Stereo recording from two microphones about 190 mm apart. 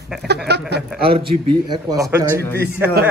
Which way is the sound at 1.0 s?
30° right (ahead or behind).